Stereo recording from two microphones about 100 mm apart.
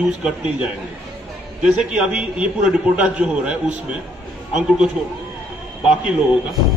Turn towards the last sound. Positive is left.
turn(degrees=-5)  # may be behind; listen again after turning